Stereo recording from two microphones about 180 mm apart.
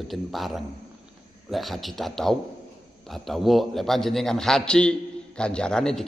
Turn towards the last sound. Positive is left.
turn(degrees=5)  # may be behind; listen again after turning